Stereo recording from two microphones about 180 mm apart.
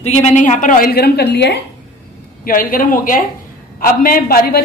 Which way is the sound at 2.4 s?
50° left (ahead or behind).